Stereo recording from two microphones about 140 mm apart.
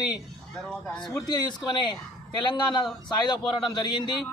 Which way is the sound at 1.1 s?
30° left (ahead or behind).